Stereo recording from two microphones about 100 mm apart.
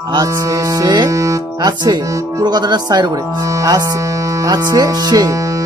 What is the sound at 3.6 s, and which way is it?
Speech, 40° right (ahead or behind).